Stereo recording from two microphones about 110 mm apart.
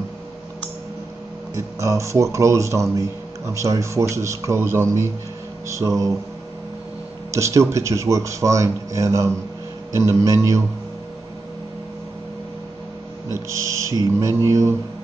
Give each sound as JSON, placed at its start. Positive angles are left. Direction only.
{"t": 1.5, "sound": "a man's voice", "side_deg": -30}
{"t": 7.2, "sound": "a man's voice", "side_deg": -25}
{"t": 13.5, "sound": "a man's voice", "side_deg": -30}